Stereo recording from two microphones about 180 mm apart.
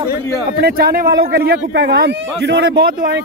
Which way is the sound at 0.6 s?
60° right (ahead or behind).